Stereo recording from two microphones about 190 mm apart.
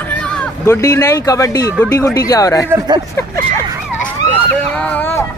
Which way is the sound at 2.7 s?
20° right (ahead or behind).